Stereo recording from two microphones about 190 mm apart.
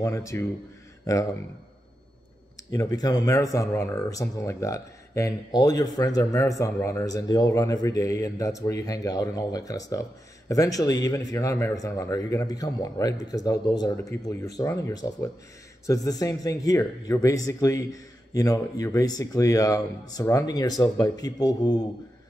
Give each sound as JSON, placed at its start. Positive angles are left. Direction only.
{"t": 0.0, "sound": "speech", "side_deg": 15}
{"t": 2.7, "sound": "speech", "side_deg": 20}